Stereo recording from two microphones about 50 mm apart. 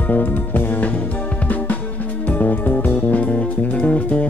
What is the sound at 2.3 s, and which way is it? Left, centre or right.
Music, left.